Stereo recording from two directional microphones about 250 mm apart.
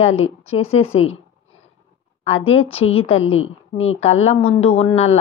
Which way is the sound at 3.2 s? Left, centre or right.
Left.